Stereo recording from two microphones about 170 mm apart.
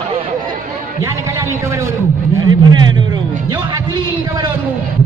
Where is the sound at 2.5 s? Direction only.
25° right (ahead or behind).